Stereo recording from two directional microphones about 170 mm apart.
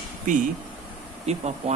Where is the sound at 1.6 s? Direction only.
35° right (ahead or behind).